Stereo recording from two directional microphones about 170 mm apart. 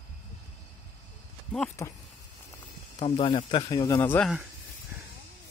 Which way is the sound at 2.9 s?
35° left (ahead or behind).